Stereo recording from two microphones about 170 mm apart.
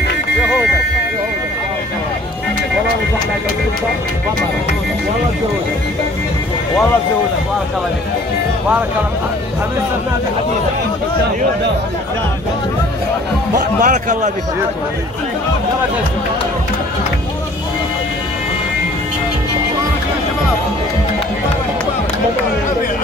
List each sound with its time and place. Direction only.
13.6 s a man's voice: 50° right (ahead or behind)